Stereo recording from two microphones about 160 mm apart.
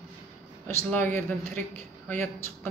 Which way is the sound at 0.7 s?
10° left (ahead or behind).